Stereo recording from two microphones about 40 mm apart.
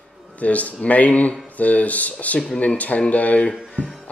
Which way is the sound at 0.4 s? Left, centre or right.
Left.